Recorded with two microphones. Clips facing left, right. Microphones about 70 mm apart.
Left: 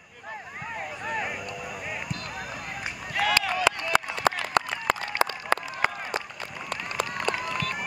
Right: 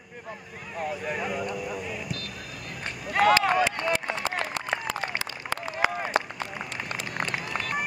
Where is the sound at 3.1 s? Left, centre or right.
Right.